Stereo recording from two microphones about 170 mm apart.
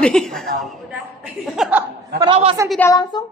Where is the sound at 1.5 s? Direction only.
5° right (ahead or behind).